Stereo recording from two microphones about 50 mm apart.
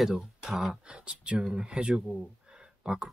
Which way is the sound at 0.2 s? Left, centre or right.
Centre.